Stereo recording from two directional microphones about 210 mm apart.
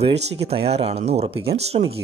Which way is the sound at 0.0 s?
30° right (ahead or behind).